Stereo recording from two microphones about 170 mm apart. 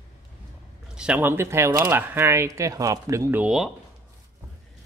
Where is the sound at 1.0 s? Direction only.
10° right (ahead or behind).